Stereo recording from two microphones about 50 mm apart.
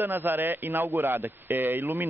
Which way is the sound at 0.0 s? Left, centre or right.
Right.